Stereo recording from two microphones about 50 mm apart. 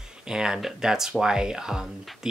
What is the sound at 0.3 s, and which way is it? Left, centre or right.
Speech, centre.